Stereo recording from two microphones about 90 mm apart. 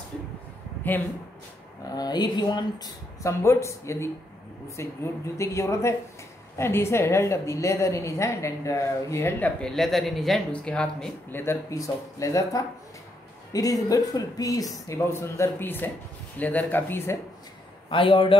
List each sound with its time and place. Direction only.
2.0 s speech: 50° left (ahead or behind)
3.2 s a woman's voice: 35° left (ahead or behind)
9.4 s speech: 10° left (ahead or behind)
11.3 s speech: 25° left (ahead or behind)
11.7 s a woman's voice: 40° left (ahead or behind)
17.8 s a man's voice: 70° left (ahead or behind)